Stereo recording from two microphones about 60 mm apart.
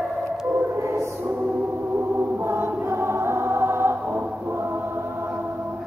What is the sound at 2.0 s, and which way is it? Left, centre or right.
Choir, right.